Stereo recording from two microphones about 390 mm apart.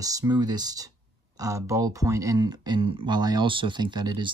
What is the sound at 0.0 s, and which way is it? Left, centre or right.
Speech, centre.